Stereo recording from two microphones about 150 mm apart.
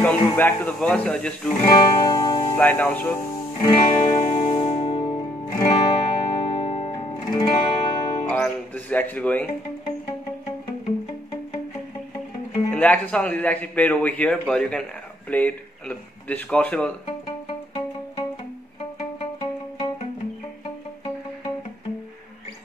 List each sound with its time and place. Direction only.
0.0 s a man's voice: 10° left (ahead or behind)
1.9 s music: 25° left (ahead or behind)
2.5 s a man's voice: 10° left (ahead or behind)
3.5 s music: 35° left (ahead or behind)
8.3 s music: 10° left (ahead or behind)
12.7 s a man's voice: 10° left (ahead or behind)
17.5 s music: 35° left (ahead or behind)